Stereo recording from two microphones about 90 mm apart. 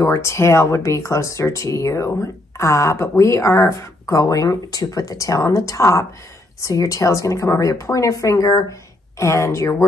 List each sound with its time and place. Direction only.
0.0 s speech: 30° left (ahead or behind)